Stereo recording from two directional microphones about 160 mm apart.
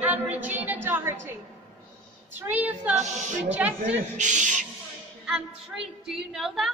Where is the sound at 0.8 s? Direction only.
15° right (ahead or behind).